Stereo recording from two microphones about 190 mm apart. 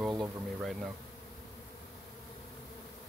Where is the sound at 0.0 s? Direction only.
Centre (ahead or behind).